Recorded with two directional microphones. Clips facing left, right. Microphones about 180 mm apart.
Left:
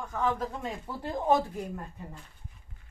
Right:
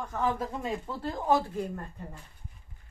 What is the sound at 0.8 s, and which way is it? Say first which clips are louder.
Speech: left 2 dB; 20° left (ahead or behind).